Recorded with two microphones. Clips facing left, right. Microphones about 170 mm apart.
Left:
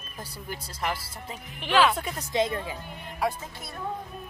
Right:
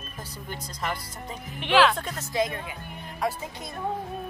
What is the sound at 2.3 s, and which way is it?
Speech, 30° left (ahead or behind).